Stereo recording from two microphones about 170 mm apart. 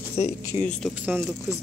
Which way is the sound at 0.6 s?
5° left (ahead or behind).